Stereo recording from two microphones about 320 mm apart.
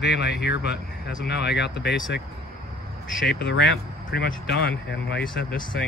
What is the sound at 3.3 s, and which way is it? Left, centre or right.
Speech, left.